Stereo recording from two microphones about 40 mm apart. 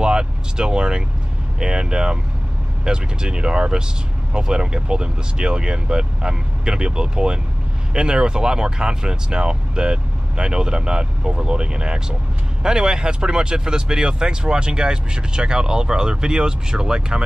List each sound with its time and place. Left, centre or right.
0.0 s speech: right